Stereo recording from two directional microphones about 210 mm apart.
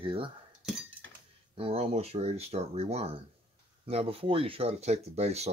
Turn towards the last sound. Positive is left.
turn(degrees=-30)  # may be behind; listen again after turning